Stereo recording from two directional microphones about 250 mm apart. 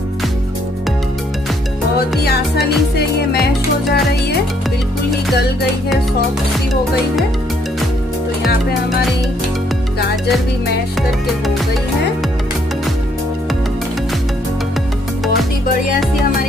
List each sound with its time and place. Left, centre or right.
2.2 s music: left
3.9 s music: left
11.0 s music: centre